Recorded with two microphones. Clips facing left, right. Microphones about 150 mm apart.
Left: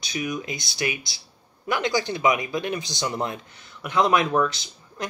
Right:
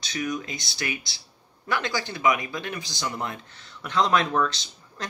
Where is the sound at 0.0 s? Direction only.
10° left (ahead or behind).